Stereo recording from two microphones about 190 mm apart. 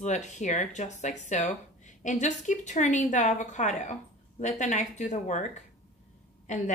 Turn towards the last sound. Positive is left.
turn(degrees=40)  # may be behind; listen again after turning